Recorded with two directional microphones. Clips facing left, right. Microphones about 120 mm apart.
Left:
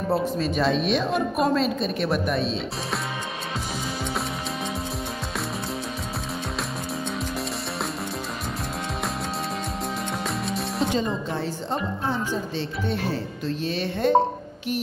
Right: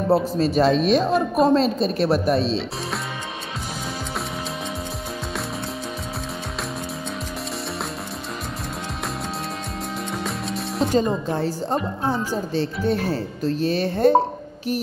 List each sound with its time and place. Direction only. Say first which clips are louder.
0.1 s a woman's voice: right 5 dB; 35° right (ahead or behind)
10.9 s a woman's voice: right 5 dB; 40° right (ahead or behind)